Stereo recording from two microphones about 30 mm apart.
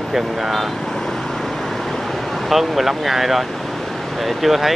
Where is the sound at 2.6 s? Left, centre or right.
Centre.